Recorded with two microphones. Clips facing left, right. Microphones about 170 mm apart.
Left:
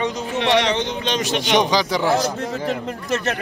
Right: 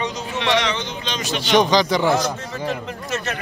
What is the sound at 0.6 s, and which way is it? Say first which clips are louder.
Speech: left 4 dB; 65° left (ahead or behind).